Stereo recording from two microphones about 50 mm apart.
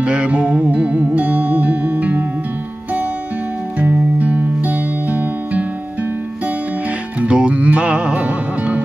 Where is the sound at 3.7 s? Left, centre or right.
Right.